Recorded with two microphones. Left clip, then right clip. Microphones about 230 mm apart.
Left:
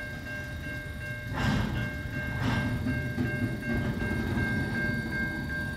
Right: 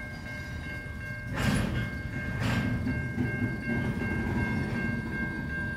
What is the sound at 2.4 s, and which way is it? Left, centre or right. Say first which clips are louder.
Train: even; right.